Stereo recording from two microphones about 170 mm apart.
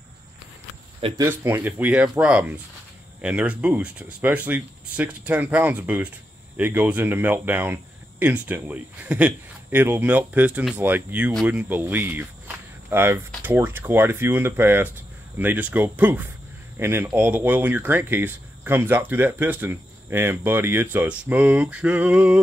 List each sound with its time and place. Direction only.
1.0 s speech: 20° right (ahead or behind)